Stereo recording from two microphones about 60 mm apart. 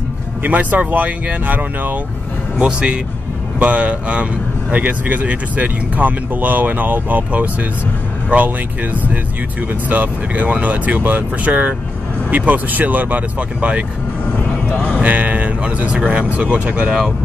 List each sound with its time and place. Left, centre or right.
0.4 s speech: right
2.6 s speech: centre
14.4 s vehicle: left
15.0 s a sound: right
16.1 s speech: right